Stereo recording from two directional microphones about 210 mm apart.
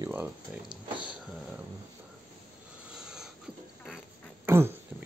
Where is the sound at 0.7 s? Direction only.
20° right (ahead or behind).